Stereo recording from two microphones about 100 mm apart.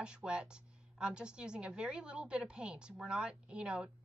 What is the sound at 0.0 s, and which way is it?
A woman's voice, 10° right (ahead or behind).